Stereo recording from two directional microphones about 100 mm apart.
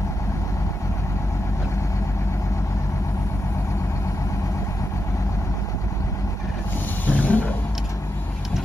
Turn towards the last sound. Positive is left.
turn(degrees=15)  # may be behind; listen again after turning